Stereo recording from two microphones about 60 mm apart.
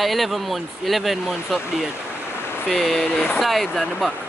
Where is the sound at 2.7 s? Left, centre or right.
Centre.